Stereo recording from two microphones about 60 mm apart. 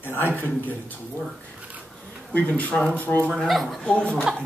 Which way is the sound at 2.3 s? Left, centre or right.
Left.